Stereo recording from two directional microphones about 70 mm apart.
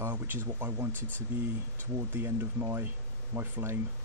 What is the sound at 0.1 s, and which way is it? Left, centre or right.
Speech, right.